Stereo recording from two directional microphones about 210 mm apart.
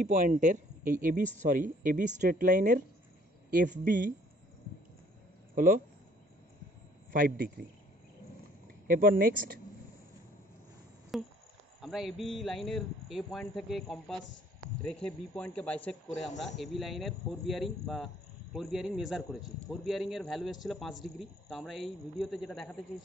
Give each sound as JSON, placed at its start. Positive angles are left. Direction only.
{"t": 0.0, "sound": "a man's voice", "side_deg": -40}
{"t": 5.5, "sound": "speech", "side_deg": -40}
{"t": 7.1, "sound": "speech", "side_deg": -45}
{"t": 8.8, "sound": "speech", "side_deg": -40}
{"t": 11.1, "sound": "a man's voice", "side_deg": 0}